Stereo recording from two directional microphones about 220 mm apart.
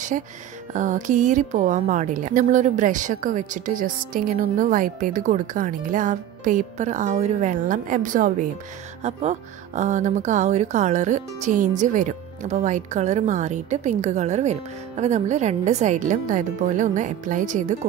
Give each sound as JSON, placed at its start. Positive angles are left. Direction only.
{"t": 0.1, "sound": "a woman's voice", "side_deg": -35}